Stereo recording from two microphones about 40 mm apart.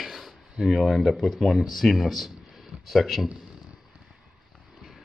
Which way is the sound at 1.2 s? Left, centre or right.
Centre.